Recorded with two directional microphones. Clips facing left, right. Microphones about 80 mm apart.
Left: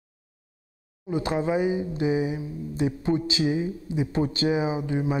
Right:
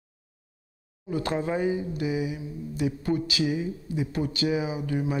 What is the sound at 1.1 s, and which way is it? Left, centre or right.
Speech, centre.